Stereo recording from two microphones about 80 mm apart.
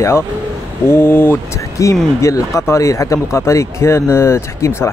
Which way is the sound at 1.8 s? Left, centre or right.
Left.